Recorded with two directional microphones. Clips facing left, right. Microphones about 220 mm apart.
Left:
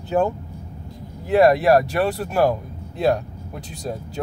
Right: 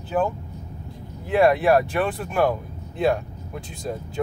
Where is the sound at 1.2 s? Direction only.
40° left (ahead or behind).